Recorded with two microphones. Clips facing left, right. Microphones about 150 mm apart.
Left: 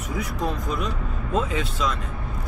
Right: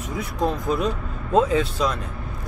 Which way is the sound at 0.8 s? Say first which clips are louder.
Right 4 dB; 35° right (ahead or behind).